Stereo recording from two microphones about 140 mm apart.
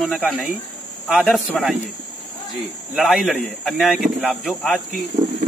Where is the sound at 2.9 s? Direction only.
Centre (ahead or behind).